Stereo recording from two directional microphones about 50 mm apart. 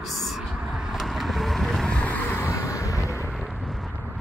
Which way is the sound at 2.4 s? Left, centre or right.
Left.